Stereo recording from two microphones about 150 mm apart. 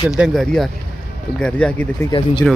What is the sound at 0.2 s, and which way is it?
Speech, centre (ahead or behind).